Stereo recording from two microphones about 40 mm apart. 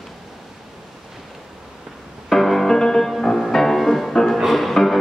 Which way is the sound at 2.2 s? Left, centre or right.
Centre.